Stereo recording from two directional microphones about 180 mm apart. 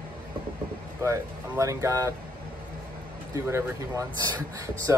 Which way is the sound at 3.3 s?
20° right (ahead or behind).